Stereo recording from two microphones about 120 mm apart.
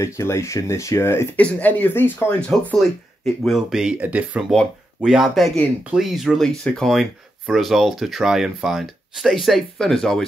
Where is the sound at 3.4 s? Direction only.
5° right (ahead or behind).